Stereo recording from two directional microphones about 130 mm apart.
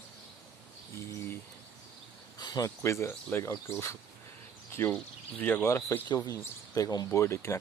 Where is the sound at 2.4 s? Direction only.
30° left (ahead or behind).